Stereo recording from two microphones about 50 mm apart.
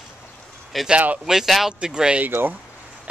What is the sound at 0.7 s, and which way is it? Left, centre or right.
Speech, centre.